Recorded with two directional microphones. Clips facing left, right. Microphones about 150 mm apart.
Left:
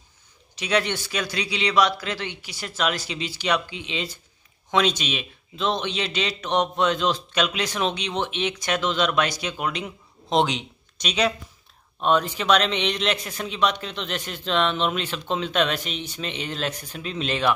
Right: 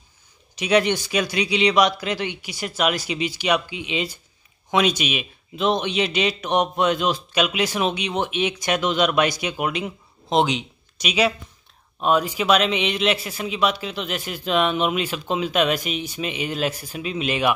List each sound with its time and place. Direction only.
0.6 s a man's voice: 15° right (ahead or behind)